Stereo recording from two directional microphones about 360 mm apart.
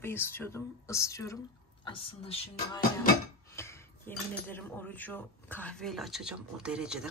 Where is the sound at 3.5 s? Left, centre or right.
Centre.